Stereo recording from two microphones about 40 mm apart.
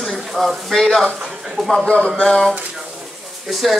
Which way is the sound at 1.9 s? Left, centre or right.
Centre.